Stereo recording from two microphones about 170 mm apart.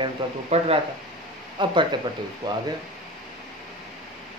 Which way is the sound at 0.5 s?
40° right (ahead or behind).